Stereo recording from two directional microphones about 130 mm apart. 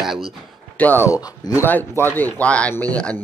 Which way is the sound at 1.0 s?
30° left (ahead or behind).